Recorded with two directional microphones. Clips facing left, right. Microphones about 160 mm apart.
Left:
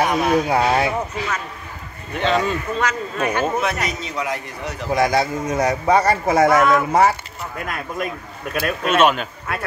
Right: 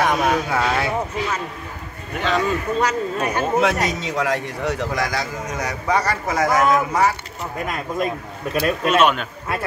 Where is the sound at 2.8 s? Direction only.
40° right (ahead or behind).